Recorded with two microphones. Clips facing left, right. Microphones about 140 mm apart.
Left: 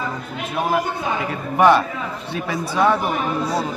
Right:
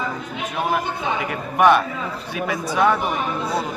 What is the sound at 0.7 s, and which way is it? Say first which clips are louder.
A man's voice: left 2 dB; centre (ahead or behind).